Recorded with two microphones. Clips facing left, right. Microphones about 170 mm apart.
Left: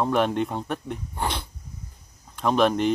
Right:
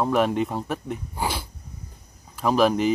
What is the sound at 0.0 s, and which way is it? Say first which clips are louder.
Speech: right 1 dB; centre (ahead or behind).